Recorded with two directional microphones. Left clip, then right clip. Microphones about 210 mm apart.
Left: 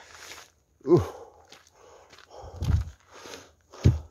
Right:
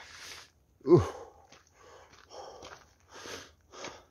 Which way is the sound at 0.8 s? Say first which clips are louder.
Left 1 dB; centre (ahead or behind).